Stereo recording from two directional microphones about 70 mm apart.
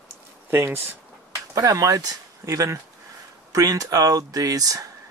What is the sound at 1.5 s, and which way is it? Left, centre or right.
Speech, right.